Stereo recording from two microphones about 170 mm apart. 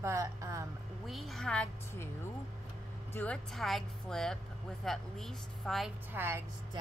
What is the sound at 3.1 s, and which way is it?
Speech, 10° left (ahead or behind).